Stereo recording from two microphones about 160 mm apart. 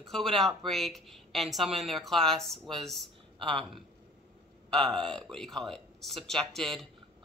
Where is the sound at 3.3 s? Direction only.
35° right (ahead or behind).